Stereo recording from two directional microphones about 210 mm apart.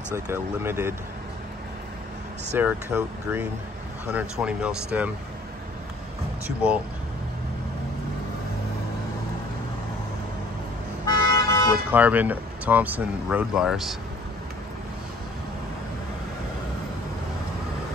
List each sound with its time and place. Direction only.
0.1 s speech: 10° right (ahead or behind)
2.5 s speech: 10° right (ahead or behind)
11.1 s toot: 15° left (ahead or behind)
11.9 s speech: 10° right (ahead or behind)